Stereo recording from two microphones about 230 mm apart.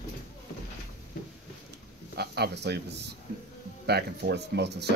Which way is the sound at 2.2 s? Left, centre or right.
Right.